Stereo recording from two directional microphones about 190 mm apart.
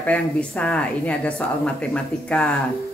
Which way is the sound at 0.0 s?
5° left (ahead or behind).